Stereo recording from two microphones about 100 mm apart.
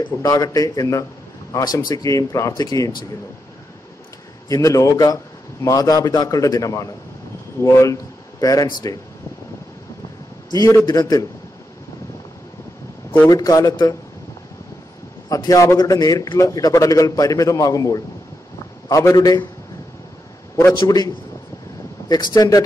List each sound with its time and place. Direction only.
0.2 s a man's voice: 35° left (ahead or behind)
4.5 s a man's voice: 35° left (ahead or behind)
10.5 s a man's voice: 35° left (ahead or behind)
13.3 s a man's voice: 35° left (ahead or behind)
15.2 s a man's voice: 35° left (ahead or behind)
20.8 s a man's voice: 40° left (ahead or behind)
22.1 s a man's voice: 40° left (ahead or behind)